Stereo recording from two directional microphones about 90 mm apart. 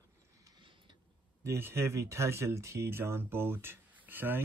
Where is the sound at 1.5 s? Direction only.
30° right (ahead or behind).